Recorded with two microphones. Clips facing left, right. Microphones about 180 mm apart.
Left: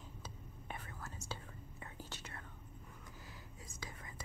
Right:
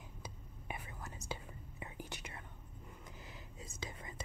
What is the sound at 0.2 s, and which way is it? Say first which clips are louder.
Whispering: right 1 dB; 15° right (ahead or behind).